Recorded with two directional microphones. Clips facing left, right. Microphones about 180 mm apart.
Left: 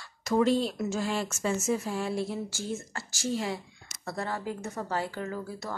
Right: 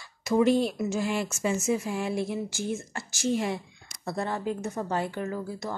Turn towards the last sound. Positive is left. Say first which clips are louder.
# right 3 dB
turn(degrees=-20)  # may be behind; listen again after turning